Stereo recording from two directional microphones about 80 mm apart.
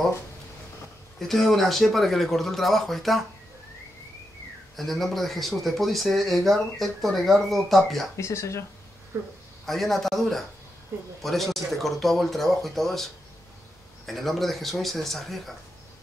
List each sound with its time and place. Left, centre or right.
1.2 s speech: centre
4.7 s speech: centre
8.2 s speech: left
9.7 s speech: centre